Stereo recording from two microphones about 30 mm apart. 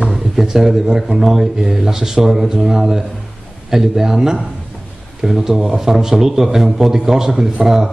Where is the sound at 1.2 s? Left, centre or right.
Centre.